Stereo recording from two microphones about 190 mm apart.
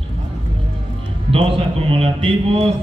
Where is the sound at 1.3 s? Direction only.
30° right (ahead or behind).